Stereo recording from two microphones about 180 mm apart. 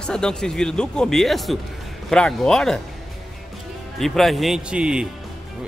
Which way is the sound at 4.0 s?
Centre (ahead or behind).